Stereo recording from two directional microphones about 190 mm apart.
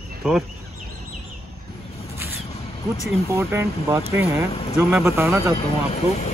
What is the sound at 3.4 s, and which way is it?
Speech, 15° right (ahead or behind).